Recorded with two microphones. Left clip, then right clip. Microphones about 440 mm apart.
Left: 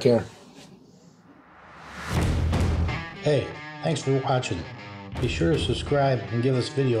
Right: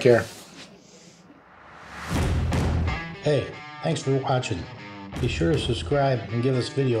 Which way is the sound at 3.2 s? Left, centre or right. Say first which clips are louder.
Even; centre.